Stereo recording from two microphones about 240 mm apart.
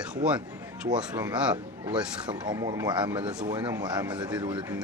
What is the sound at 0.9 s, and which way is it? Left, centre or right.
A man's voice, centre.